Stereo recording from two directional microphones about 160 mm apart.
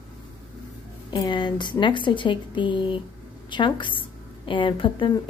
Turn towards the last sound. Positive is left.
turn(degrees=30)  # may be behind; listen again after turning